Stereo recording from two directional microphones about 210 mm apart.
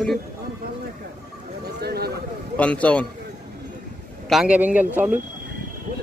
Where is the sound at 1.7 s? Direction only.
50° right (ahead or behind).